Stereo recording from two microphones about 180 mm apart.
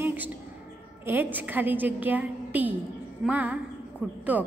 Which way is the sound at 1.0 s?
10° right (ahead or behind).